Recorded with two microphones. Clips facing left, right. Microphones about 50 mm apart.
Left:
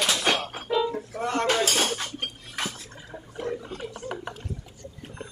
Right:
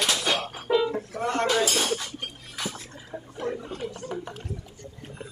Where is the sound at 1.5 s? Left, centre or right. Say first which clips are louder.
Even; left.